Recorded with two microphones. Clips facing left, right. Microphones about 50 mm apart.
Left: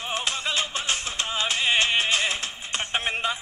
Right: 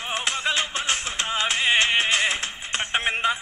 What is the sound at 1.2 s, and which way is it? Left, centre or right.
Music, right.